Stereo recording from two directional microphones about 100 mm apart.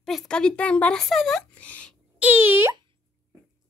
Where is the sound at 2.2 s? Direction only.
20° right (ahead or behind).